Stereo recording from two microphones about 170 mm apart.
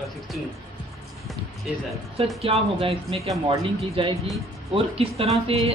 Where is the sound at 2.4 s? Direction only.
35° right (ahead or behind).